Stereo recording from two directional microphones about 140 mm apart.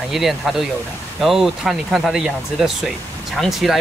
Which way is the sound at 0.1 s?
Centre (ahead or behind).